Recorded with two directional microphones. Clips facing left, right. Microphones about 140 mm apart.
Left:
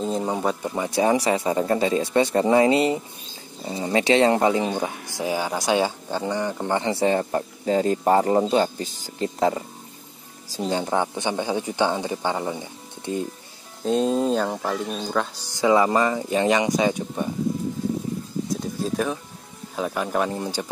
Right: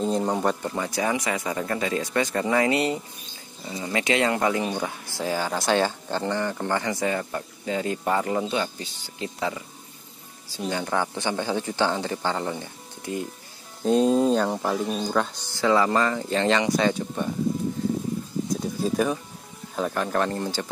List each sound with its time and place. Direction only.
0.0 s speech: centre (ahead or behind)
0.8 s speech: 25° left (ahead or behind)
10.5 s speech: 30° left (ahead or behind)
13.8 s speech: centre (ahead or behind)
15.5 s speech: 15° left (ahead or behind)
18.5 s a sound: centre (ahead or behind)
19.7 s speech: 5° left (ahead or behind)